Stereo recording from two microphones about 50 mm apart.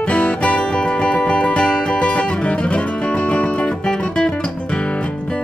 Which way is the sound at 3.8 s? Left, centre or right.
Centre.